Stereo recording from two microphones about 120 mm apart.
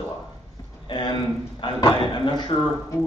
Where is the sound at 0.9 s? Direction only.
40° left (ahead or behind).